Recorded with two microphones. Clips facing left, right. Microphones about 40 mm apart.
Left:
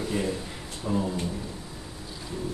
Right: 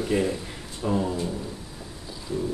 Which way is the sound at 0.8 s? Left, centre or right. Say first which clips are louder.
Right 3 dB; centre.